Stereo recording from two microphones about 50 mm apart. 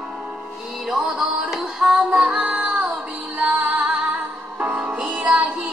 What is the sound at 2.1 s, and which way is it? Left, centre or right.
Female singing, centre.